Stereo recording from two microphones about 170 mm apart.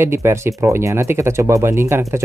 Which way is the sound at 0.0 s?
15° right (ahead or behind).